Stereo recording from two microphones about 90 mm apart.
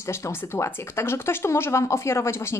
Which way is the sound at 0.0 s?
30° left (ahead or behind).